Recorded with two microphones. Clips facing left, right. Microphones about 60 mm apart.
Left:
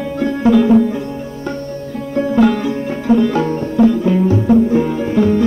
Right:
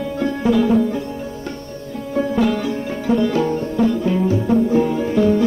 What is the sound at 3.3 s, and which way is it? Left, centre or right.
Music, left.